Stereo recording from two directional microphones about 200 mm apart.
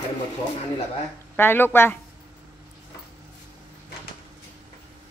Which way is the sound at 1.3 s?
10° left (ahead or behind).